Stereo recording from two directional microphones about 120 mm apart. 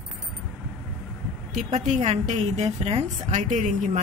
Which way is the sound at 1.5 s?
90° right.